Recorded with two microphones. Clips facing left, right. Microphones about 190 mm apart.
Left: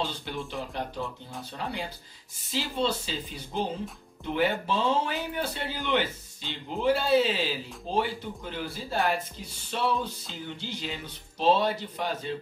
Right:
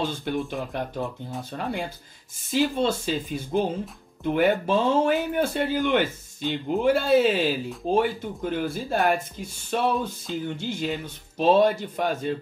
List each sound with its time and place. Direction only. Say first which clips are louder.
0.0 s speech: right 6 dB; 50° right (ahead or behind)